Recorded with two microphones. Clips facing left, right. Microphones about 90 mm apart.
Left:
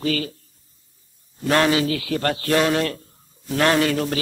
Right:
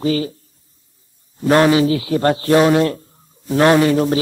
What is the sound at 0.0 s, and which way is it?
Speech, 25° right (ahead or behind).